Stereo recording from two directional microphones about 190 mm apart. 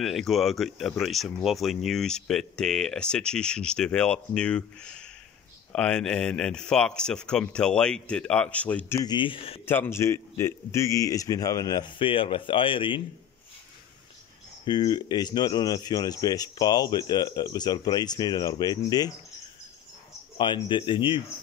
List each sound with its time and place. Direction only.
0.0 s speech: centre (ahead or behind); by 9.6 s 30° left (ahead or behind)
9.7 s speech: 10° left (ahead or behind)
14.6 s speech: 20° left (ahead or behind)
20.3 s speech: 25° left (ahead or behind)